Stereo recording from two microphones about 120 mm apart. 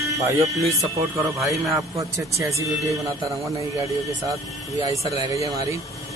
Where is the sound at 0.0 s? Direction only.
25° right (ahead or behind).